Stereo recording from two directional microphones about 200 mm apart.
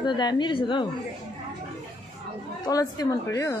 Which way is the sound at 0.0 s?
20° left (ahead or behind).